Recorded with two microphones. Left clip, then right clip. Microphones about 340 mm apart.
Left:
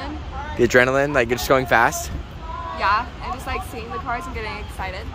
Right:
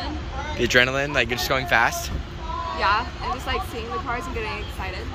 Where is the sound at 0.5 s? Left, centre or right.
Centre.